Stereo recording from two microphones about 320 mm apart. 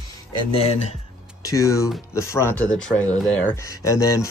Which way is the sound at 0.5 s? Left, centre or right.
Centre.